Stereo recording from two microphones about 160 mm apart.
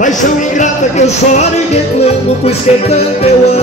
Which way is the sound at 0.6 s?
45° left (ahead or behind).